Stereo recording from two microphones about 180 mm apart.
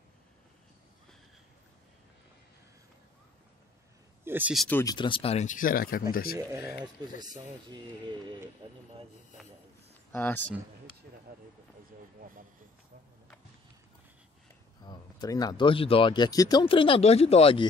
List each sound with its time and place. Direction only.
4.2 s speech: 10° right (ahead or behind)
4.6 s speech: 10° left (ahead or behind)
4.9 s speech: 30° left (ahead or behind); by 6.0 s 55° left (ahead or behind)
6.3 s speech: 15° right (ahead or behind)
8.6 s speech: 30° right (ahead or behind)
10.1 s speech: 10° left (ahead or behind)
14.8 s speech: 25° left (ahead or behind)